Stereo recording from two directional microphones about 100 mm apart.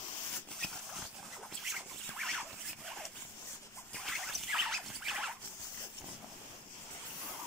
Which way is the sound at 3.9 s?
Centre (ahead or behind).